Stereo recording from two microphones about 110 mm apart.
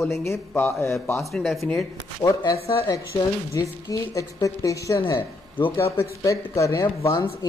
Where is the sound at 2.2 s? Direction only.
35° left (ahead or behind).